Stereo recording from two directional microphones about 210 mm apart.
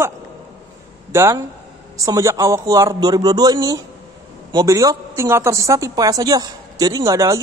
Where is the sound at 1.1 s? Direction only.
15° right (ahead or behind).